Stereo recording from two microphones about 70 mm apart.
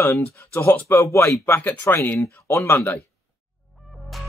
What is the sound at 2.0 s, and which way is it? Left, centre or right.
Speech, left.